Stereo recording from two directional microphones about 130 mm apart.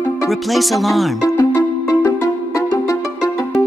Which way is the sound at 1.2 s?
25° left (ahead or behind).